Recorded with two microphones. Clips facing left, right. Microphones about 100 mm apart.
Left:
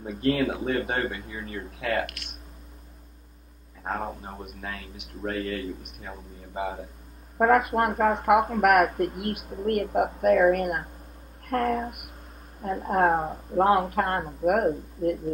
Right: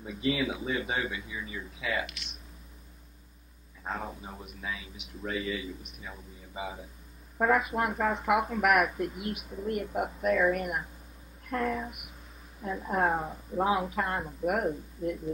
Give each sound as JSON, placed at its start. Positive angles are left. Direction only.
{"t": 0.0, "sound": "speech", "side_deg": 50}
{"t": 3.8, "sound": "a man's voice", "side_deg": 45}
{"t": 13.2, "sound": "speech", "side_deg": 35}
{"t": 13.6, "sound": "speech", "side_deg": 55}